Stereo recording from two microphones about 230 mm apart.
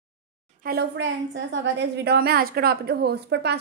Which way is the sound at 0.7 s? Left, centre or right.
Right.